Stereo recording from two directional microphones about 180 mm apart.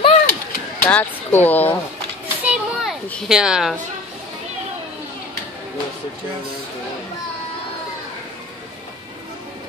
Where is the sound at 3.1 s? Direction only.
5° right (ahead or behind).